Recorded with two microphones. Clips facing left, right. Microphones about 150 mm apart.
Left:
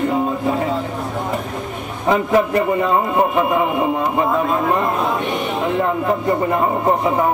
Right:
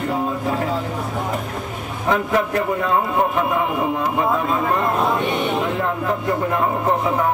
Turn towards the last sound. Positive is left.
turn(degrees=20)  # may be behind; listen again after turning